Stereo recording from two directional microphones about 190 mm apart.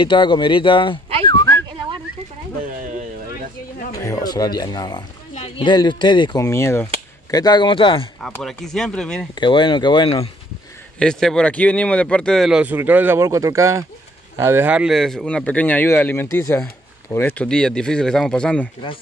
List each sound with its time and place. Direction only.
0.0 s speech: 25° left (ahead or behind)
1.2 s whistling: 20° left (ahead or behind)
3.9 s speech: 15° left (ahead or behind)
8.2 s speech: centre (ahead or behind)
9.3 s speech: 25° left (ahead or behind)
11.0 s speech: 5° left (ahead or behind)